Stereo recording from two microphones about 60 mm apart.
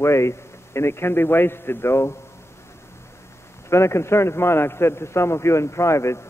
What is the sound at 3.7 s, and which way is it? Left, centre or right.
A man's voice, left.